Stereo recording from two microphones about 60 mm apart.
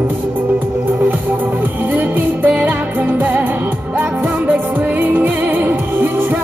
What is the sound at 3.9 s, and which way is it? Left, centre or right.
Music, right.